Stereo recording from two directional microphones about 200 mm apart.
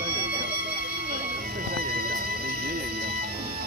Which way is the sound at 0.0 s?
50° right (ahead or behind).